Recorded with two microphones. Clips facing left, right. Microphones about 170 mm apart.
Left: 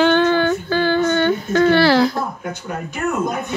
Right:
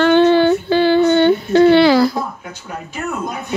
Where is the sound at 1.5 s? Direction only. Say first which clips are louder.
Right 4 dB; 15° right (ahead or behind).